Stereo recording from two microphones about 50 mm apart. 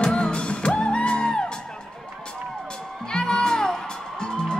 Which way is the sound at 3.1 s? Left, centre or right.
Centre.